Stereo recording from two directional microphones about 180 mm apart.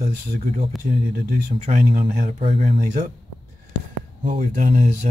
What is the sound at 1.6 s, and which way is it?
Speech, 40° right (ahead or behind).